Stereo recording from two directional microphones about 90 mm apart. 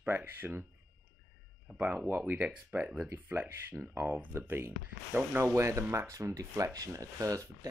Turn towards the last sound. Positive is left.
turn(degrees=-35)  # may be behind; listen again after turning